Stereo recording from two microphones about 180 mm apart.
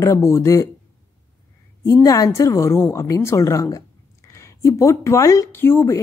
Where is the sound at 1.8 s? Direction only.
15° left (ahead or behind).